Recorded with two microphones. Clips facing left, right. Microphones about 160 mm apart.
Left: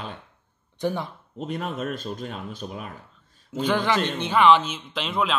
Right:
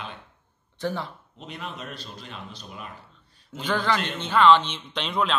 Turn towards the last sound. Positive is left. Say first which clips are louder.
# even
turn(degrees=5)  # may be behind; listen again after turning